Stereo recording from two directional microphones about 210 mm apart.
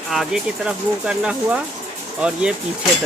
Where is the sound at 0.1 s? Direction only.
Centre (ahead or behind).